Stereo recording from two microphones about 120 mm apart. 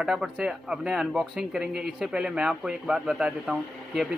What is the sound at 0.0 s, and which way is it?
Speech, 5° right (ahead or behind).